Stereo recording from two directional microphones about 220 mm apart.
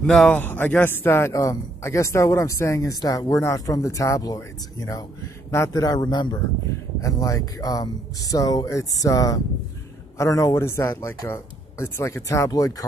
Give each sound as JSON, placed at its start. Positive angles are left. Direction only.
{"t": 0.0, "sound": "a man's voice", "side_deg": 5}